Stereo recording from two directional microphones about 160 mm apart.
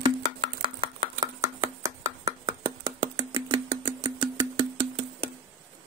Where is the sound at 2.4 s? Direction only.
20° right (ahead or behind).